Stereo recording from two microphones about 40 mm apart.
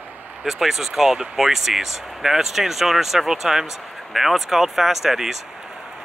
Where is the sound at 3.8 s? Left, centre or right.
Centre.